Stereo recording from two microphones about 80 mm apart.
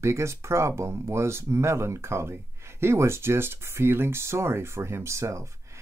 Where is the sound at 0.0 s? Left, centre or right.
Right.